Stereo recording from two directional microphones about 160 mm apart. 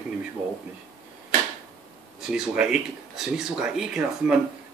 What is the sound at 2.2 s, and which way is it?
Speech, 5° right (ahead or behind).